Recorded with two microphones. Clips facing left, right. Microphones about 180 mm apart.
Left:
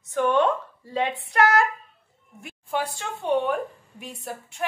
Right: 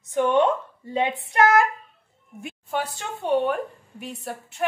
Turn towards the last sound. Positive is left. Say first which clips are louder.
# right 3 dB
turn(degrees=0)  # may be behind; listen again after turning